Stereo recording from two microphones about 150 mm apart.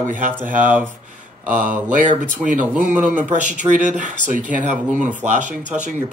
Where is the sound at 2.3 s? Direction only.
10° right (ahead or behind).